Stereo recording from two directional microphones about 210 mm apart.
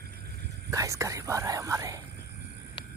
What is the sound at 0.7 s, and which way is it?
Speech, 15° right (ahead or behind).